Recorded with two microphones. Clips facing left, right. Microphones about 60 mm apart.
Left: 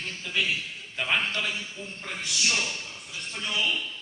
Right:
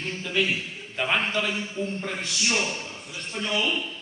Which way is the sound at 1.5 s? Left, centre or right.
Right.